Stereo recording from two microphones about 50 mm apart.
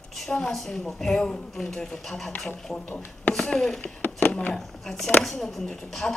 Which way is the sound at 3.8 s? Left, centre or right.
Left.